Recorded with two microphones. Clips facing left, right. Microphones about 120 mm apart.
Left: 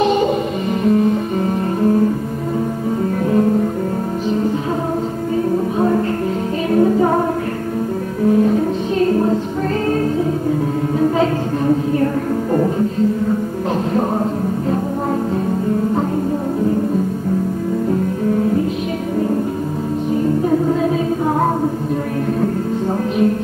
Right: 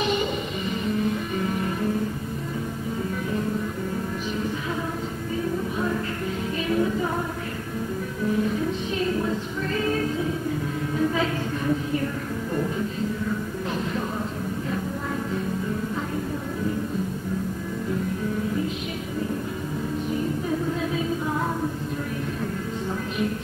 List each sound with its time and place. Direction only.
0.0 s music: 40° left (ahead or behind)
5.8 s music: 55° left (ahead or behind)
8.3 s music: 50° left (ahead or behind)
11.0 s music: 45° left (ahead or behind)